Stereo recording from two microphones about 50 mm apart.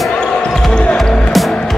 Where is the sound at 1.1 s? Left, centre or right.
Centre.